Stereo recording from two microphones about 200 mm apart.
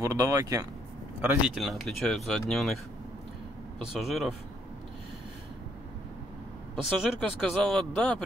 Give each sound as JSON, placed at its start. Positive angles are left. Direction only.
{"t": 0.0, "sound": "speech", "side_deg": -15}
{"t": 4.0, "sound": "speech", "side_deg": 0}
{"t": 6.7, "sound": "speech", "side_deg": 5}